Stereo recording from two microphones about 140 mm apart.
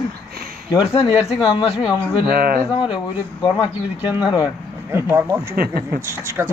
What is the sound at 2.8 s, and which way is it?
Speech, 35° left (ahead or behind).